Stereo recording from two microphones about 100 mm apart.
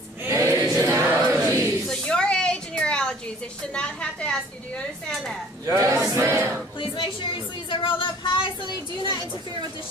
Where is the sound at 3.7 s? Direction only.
10° left (ahead or behind).